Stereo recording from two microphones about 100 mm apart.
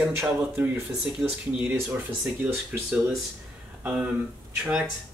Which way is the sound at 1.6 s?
20° right (ahead or behind).